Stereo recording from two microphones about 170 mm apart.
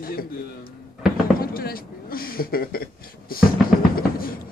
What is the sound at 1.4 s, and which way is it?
A man's voice, 60° left (ahead or behind).